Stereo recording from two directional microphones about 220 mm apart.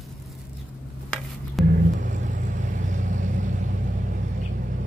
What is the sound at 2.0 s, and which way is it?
Vehicle, 35° right (ahead or behind).